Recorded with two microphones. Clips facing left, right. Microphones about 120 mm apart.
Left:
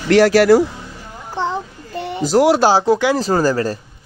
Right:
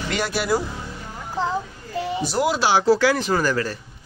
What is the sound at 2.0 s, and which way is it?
Speech, 70° left (ahead or behind).